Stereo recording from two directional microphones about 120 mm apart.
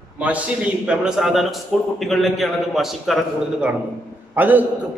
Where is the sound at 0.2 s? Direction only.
10° right (ahead or behind).